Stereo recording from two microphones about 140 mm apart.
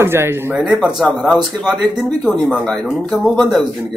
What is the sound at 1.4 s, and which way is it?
Speech, centre (ahead or behind).